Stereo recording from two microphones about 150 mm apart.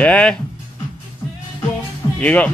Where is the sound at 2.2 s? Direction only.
10° left (ahead or behind).